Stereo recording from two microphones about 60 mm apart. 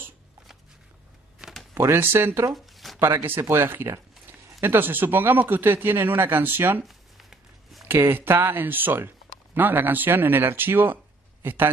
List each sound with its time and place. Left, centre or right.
1.7 s a sound: right
2.0 s speech: right
2.5 s shuffling cards: centre
3.3 s speech: right
6.8 s a sound: centre
7.9 s speech: right